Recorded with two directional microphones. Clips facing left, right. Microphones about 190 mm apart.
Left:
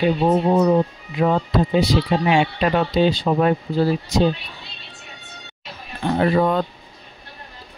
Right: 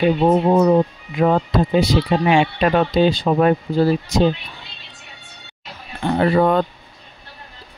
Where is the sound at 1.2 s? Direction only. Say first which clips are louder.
Right 2 dB; 50° right (ahead or behind).